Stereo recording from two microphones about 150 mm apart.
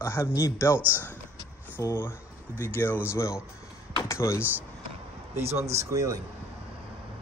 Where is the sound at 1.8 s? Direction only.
15° left (ahead or behind).